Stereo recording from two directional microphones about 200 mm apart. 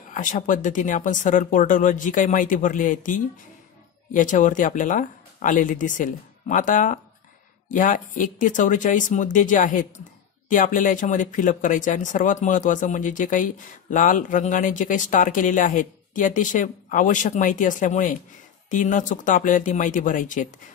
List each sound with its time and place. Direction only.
0.1 s speech: 40° left (ahead or behind)